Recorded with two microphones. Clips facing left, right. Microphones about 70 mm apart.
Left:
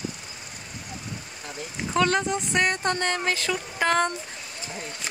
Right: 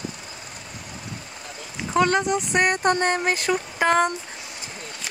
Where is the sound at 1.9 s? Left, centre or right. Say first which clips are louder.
Right 3 dB; centre.